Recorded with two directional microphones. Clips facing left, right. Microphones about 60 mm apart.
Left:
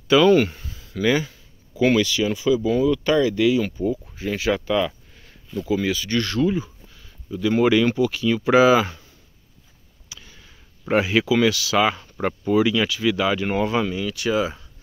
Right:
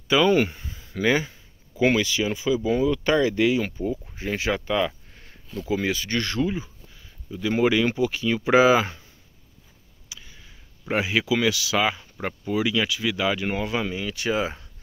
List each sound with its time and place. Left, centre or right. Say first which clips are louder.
0.1 s speech: left 4 dB; centre
4.6 s a sound: left 2 dB; right
5.7 s speech: left 2 dB; right
10.0 s speech: left 1 dB; centre
13.8 s speech: left 3 dB; right